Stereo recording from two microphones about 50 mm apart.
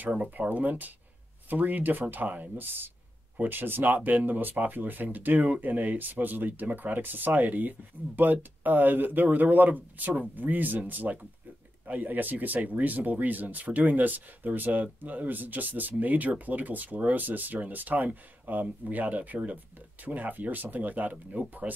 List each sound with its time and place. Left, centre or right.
0.0 s speech: right